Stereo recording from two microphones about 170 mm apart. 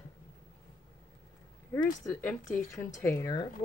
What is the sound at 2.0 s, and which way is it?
Speech, 15° left (ahead or behind).